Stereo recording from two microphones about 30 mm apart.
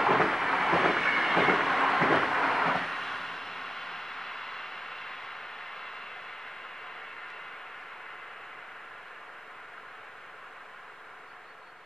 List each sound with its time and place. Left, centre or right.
0.0 s train: centre